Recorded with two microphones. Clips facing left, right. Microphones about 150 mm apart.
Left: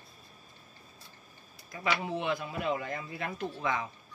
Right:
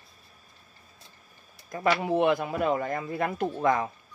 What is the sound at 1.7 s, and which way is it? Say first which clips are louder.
A man's voice: right 7 dB; 50° right (ahead or behind).